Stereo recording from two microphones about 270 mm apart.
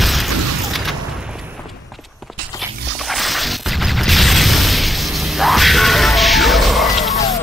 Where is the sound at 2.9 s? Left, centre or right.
Centre.